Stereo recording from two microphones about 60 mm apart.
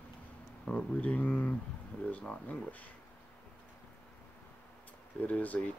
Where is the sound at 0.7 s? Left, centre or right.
Left.